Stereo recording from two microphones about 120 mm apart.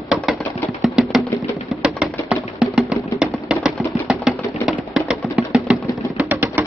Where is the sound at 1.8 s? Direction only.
5° right (ahead or behind).